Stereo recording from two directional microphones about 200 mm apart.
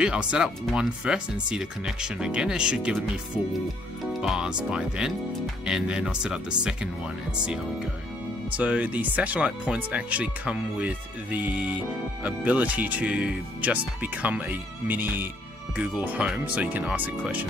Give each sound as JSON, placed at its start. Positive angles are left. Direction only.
{"t": 0.0, "sound": "speech", "side_deg": -5}